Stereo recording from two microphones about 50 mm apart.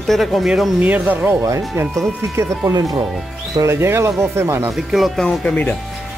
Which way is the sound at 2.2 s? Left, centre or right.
Right.